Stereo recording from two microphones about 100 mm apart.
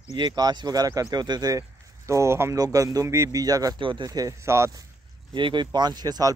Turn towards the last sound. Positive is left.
turn(degrees=-40)  # may be behind; listen again after turning